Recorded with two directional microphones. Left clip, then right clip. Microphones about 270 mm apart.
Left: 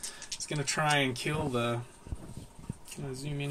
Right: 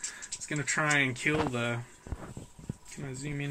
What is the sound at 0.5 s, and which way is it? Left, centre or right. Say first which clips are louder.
Speech: right 1 dB; centre.